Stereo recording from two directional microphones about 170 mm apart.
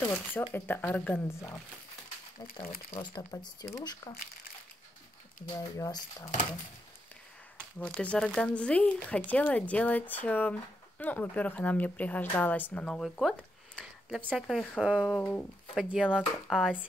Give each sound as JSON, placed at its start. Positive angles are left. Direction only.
{"t": 0.4, "sound": "speech", "side_deg": 15}
{"t": 3.0, "sound": "speech", "side_deg": 25}
{"t": 5.8, "sound": "speech", "side_deg": 20}
{"t": 7.8, "sound": "speech", "side_deg": 5}
{"t": 15.1, "sound": "speech", "side_deg": 10}
{"t": 15.7, "sound": "speech", "side_deg": -5}